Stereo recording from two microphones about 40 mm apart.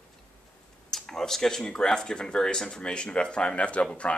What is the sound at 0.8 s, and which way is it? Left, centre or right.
Speech, centre.